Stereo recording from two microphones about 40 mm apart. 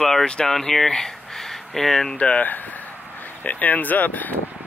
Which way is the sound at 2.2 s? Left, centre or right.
Left.